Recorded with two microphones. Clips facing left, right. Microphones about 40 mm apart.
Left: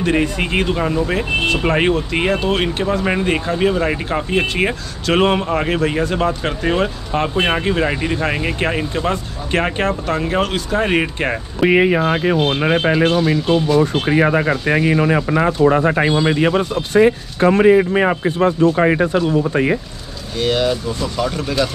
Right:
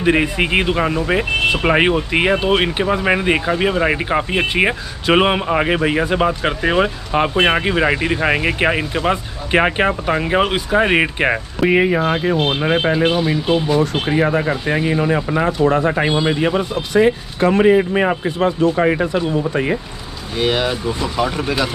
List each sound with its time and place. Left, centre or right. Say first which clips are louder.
0.0 s speech: right 2 dB; centre
11.6 s speech: left 1 dB; centre
14.7 s speech: left 2 dB; left
15.2 s speech: left 2 dB; left
15.7 s speech: left 1 dB; left
16.3 s speech: left 2 dB; left
16.9 s speech: left 1 dB; left
18.8 s speech: left 1 dB; left
20.3 s speech: left 1 dB; centre